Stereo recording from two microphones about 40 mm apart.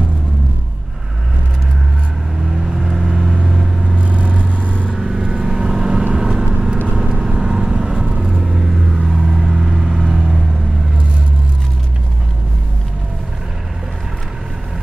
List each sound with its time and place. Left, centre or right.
2.5 s vehicle: centre
4.0 s vehicle: right
4.9 s vehicle: centre